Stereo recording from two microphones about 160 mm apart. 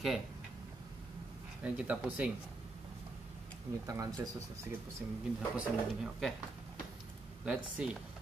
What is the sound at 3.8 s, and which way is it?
Speech, 25° right (ahead or behind).